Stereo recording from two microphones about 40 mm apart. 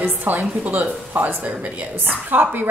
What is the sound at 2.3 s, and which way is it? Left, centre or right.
Speech, right.